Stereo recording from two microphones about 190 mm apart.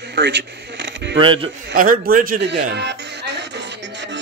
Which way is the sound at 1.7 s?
45° right (ahead or behind).